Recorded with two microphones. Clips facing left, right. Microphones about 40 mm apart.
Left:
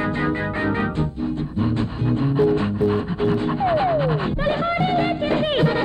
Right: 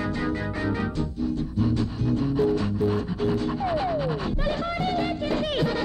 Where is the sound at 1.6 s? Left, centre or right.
Left.